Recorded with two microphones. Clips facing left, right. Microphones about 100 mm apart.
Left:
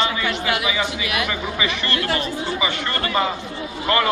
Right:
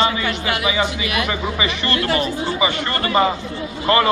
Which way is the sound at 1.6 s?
5° right (ahead or behind).